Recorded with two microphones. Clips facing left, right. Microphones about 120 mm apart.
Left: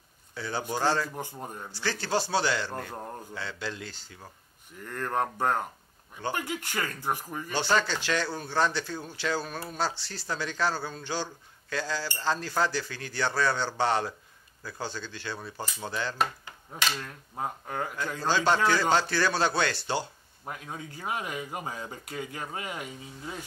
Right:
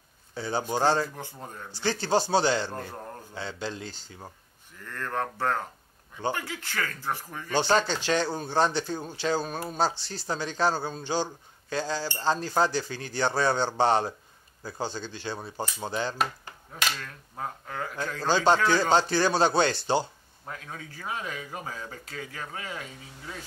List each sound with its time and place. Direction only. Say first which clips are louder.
0.3 s speech: right 3 dB; 25° right (ahead or behind)
1.1 s speech: left 3 dB; 15° left (ahead or behind)
1.7 s speech: right 4 dB; 25° right (ahead or behind)
4.8 s speech: left 2 dB; 25° left (ahead or behind)
7.5 s speech: right 3 dB; 20° right (ahead or behind)
17.0 s speech: left 2 dB; 20° left (ahead or behind)
18.3 s speech: right 2 dB; 25° right (ahead or behind)
20.4 s speech: left 2 dB; 15° left (ahead or behind)